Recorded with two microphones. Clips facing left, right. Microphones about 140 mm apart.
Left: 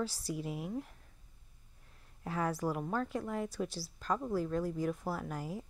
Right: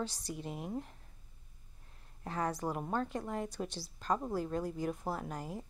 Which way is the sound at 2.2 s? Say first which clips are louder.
Left 1 dB; 5° left (ahead or behind).